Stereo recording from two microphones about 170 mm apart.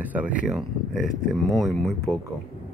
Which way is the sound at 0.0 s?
10° right (ahead or behind).